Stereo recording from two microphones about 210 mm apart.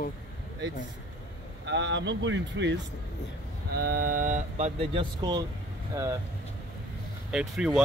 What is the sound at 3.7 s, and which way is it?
Speech, 45° right (ahead or behind).